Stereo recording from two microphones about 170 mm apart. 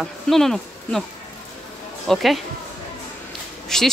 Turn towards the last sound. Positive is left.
turn(degrees=5)  # may be behind; listen again after turning